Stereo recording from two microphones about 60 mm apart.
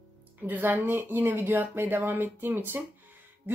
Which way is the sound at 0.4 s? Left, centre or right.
Right.